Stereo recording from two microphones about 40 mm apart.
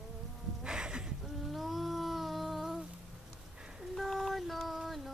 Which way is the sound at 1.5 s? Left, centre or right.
Centre.